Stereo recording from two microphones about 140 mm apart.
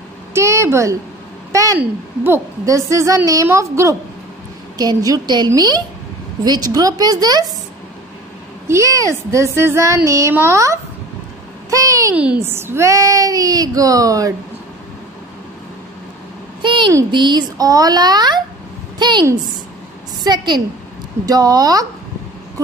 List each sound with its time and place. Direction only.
0.3 s a woman's voice: 20° right (ahead or behind)
1.5 s a sound: 25° right (ahead or behind)
1.8 s speech: 15° right (ahead or behind)
8.6 s speech: 20° right (ahead or behind)
11.7 s a sound: 25° right (ahead or behind)
12.4 s speech: 15° right (ahead or behind)
16.6 s a sound: 35° right (ahead or behind)
17.1 s a woman's voice: 30° right (ahead or behind)
20.2 s a woman's voice: 30° right (ahead or behind)